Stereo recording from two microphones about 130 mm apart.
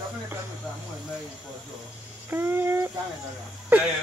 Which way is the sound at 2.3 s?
15° right (ahead or behind).